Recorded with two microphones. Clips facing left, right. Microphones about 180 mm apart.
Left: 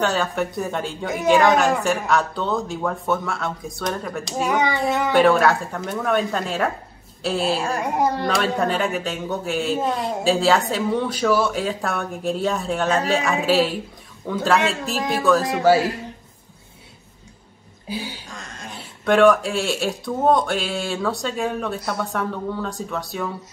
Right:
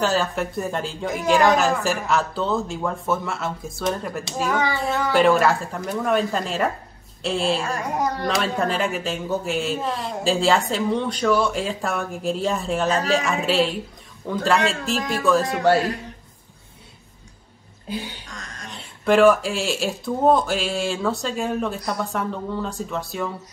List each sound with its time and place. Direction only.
0.0 s speech: centre (ahead or behind)
4.5 s a child's voice: 20° left (ahead or behind)
5.1 s speech: centre (ahead or behind)
17.8 s speech: 5° left (ahead or behind)
18.3 s a sound: 25° left (ahead or behind)
19.0 s speech: centre (ahead or behind)